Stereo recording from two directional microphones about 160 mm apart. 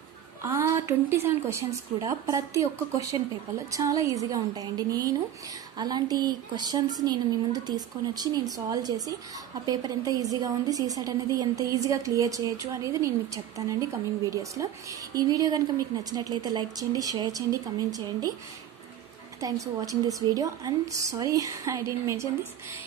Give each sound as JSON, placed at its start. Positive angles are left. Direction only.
{"t": 0.4, "sound": "a woman's voice", "side_deg": -15}
{"t": 19.4, "sound": "a woman's voice", "side_deg": -20}